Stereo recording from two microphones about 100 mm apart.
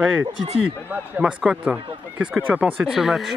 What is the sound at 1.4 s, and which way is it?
Speech, 10° right (ahead or behind).